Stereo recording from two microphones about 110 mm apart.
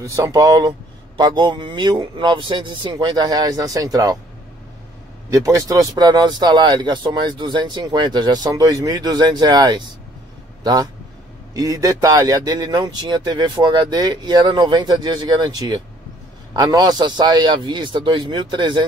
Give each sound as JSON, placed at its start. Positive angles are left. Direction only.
{"t": 0.0, "sound": "speech", "side_deg": -30}
{"t": 5.3, "sound": "speech", "side_deg": -30}